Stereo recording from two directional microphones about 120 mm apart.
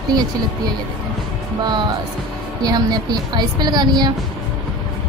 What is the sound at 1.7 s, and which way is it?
A woman's voice, 40° right (ahead or behind).